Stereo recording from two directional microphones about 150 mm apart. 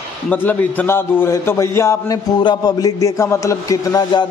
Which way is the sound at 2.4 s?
25° left (ahead or behind).